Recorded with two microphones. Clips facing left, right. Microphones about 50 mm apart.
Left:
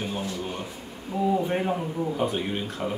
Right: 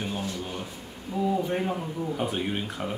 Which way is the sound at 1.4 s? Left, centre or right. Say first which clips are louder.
Left 2 dB; centre.